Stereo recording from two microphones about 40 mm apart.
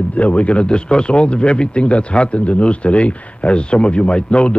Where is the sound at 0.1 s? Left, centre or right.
Left.